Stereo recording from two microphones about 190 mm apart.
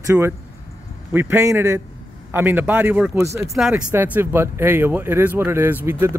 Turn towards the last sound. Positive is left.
turn(degrees=-15)  # may be behind; listen again after turning